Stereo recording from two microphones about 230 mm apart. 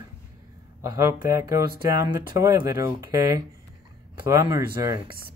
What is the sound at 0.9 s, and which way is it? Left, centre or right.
Speech, centre.